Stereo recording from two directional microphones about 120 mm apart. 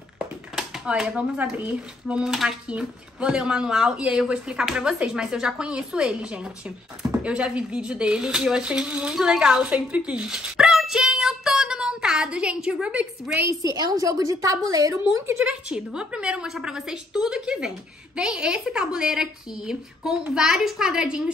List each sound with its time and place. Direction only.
0.6 s speech: 5° right (ahead or behind)
13.5 s a woman's voice: 30° right (ahead or behind)
15.4 s a woman's voice: 10° right (ahead or behind)